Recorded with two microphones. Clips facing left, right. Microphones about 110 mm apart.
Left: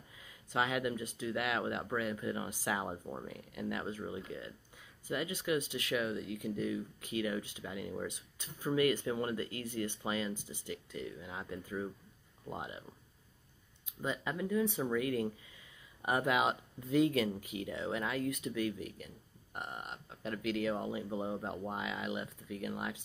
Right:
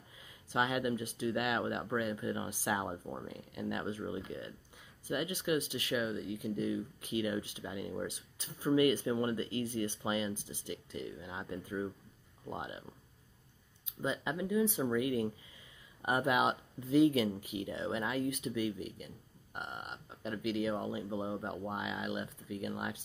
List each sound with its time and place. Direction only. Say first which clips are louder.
0.5 s speech: right 1 dB; 10° right (ahead or behind)
6.5 s speech: right 2 dB; 20° right (ahead or behind)
8.5 s speech: right 3 dB; 20° right (ahead or behind)
10.3 s speech: right 1 dB; 15° left (ahead or behind)
10.9 s speech: right 1 dB; 20° right (ahead or behind)
11.2 s speech: right 1 dB; 5° right (ahead or behind)
13.8 s speech: right 2 dB; 20° right (ahead or behind)